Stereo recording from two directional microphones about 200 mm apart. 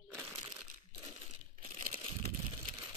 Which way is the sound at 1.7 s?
30° right (ahead or behind).